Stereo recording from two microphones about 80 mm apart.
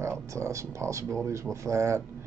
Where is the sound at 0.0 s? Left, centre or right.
Right.